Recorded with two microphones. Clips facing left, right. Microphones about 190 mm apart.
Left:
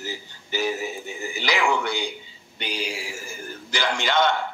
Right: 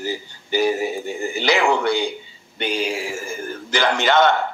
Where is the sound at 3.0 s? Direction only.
90° right.